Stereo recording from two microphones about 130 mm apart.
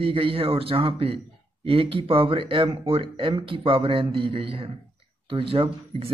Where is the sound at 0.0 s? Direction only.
45° right (ahead or behind).